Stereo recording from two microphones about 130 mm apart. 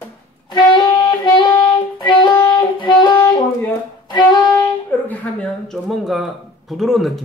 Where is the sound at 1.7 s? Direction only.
35° left (ahead or behind).